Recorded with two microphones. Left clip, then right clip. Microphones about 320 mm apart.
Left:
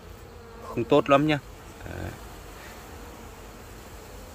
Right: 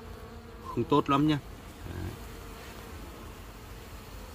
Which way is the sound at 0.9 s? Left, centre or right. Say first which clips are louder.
Left 6 dB; centre.